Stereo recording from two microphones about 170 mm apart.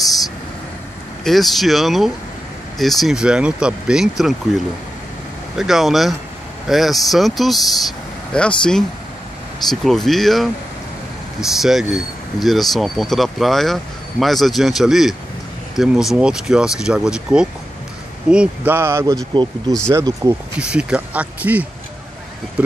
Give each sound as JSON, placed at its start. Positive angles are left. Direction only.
{"t": 1.2, "sound": "speech", "side_deg": 0}
{"t": 5.6, "sound": "speech", "side_deg": 0}
{"t": 11.5, "sound": "speech", "side_deg": 0}
{"t": 19.3, "sound": "speech", "side_deg": -25}
{"t": 20.5, "sound": "speech", "side_deg": -5}